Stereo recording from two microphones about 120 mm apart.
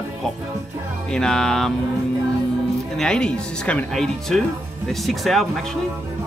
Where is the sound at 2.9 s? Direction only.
5° left (ahead or behind).